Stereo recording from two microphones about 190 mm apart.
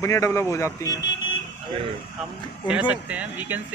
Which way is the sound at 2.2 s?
Centre (ahead or behind).